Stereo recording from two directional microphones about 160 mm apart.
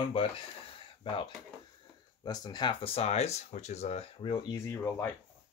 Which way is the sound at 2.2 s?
25° left (ahead or behind).